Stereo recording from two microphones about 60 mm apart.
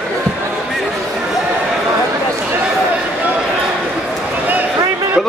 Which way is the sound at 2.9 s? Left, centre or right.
Right.